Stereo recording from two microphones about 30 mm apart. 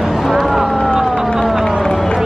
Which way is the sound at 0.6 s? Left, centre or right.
Left.